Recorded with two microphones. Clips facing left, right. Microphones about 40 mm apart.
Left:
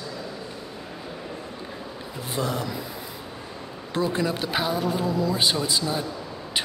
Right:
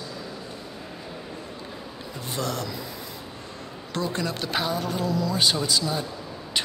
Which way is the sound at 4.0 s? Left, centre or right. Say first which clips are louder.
Left 3 dB; centre.